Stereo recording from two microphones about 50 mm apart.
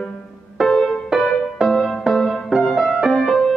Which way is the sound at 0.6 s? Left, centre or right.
Centre.